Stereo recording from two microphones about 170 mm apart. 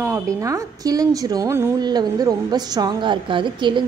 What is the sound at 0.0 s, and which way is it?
Speech, 15° right (ahead or behind).